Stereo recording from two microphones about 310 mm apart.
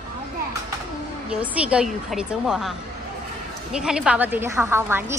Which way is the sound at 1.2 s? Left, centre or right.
Centre.